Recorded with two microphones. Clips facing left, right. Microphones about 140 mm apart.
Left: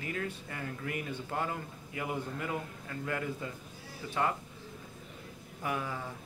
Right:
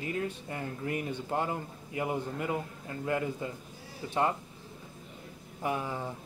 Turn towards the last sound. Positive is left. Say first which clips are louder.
# right 3 dB
turn(degrees=-25)  # may be behind; listen again after turning